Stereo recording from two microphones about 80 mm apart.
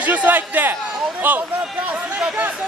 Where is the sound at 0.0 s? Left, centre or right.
Right.